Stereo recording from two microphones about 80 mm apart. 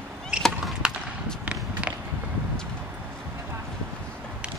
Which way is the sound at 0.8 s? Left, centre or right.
Centre.